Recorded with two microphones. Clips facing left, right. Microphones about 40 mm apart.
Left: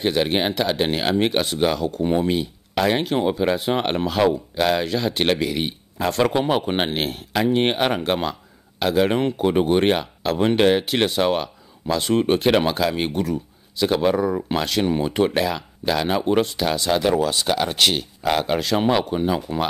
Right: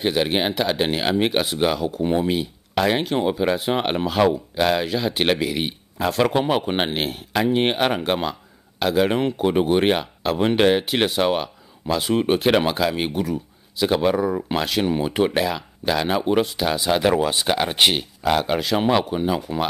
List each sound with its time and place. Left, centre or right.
0.0 s speech: centre
17.1 s speech: right
18.2 s speech: centre